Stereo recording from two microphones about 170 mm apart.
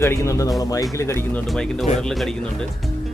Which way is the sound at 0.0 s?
15° left (ahead or behind).